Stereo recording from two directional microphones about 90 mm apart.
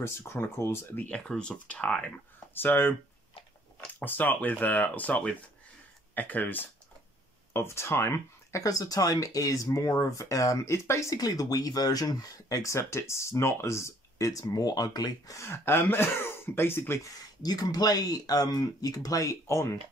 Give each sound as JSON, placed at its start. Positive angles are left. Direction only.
{"t": 0.0, "sound": "speech", "side_deg": 30}
{"t": 1.0, "sound": "speech", "side_deg": 10}
{"t": 4.0, "sound": "speech", "side_deg": 20}
{"t": 15.4, "sound": "speech", "side_deg": 25}
{"t": 17.0, "sound": "speech", "side_deg": 45}